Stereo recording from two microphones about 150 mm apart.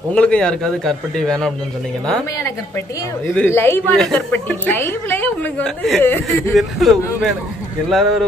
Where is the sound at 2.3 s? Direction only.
20° left (ahead or behind).